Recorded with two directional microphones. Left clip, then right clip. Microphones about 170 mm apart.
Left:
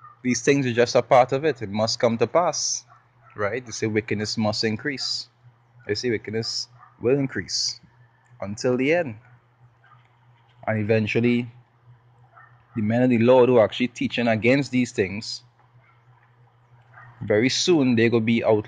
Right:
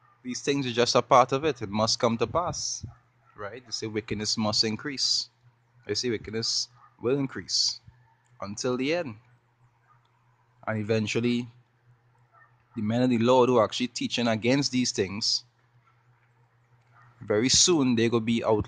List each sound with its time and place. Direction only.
0.2 s speech: 5° right (ahead or behind)
0.6 s speech: 25° right (ahead or behind)
2.4 s speech: 5° right (ahead or behind); by 9.2 s 25° right (ahead or behind)
10.6 s speech: 25° right (ahead or behind)
12.7 s speech: 25° right (ahead or behind)
17.3 s speech: 30° right (ahead or behind)